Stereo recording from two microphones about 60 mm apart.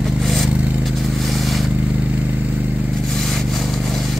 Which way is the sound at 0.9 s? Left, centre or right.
Centre.